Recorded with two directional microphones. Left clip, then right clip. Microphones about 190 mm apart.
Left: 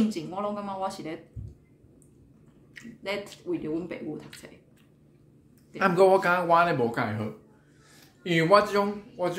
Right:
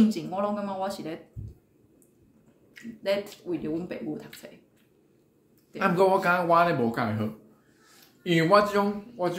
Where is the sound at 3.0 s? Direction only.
10° right (ahead or behind).